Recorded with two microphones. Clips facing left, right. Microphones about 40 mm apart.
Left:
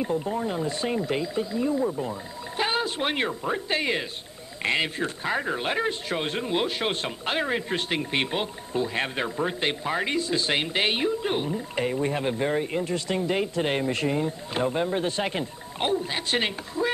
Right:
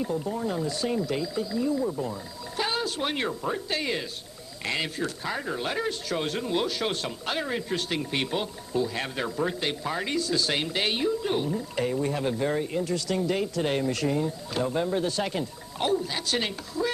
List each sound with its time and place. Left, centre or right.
0.0 s speech: left